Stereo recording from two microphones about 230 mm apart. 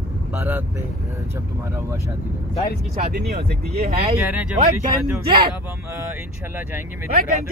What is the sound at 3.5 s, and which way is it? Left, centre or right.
Speech, right.